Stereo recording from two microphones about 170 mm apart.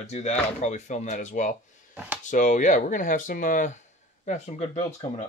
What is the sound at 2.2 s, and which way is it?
Speech, 45° left (ahead or behind).